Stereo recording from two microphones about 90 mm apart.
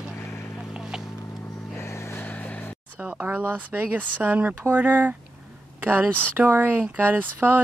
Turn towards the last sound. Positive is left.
turn(degrees=-20)  # may be behind; listen again after turning